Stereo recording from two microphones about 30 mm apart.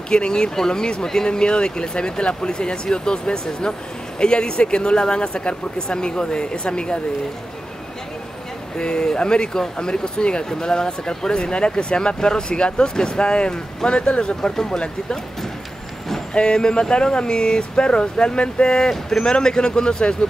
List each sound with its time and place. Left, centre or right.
0.1 s speech: left
8.7 s speech: left
13.8 s speech: left
14.4 s speech: centre
16.3 s speech: left